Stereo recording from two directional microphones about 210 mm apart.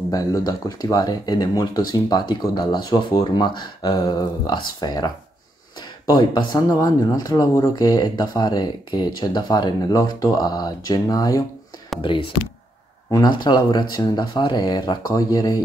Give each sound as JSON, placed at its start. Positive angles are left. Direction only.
{"t": 0.1, "sound": "speech", "side_deg": 15}